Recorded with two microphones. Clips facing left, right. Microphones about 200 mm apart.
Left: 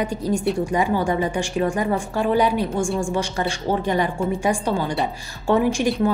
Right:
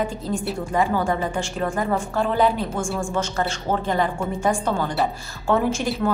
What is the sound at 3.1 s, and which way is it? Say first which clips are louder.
A woman's voice: left 1 dB; 15° left (ahead or behind).